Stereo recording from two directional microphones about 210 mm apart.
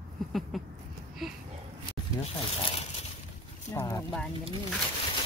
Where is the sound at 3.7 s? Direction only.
15° left (ahead or behind).